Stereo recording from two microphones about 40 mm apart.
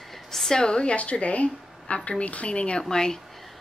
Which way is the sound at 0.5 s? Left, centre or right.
Centre.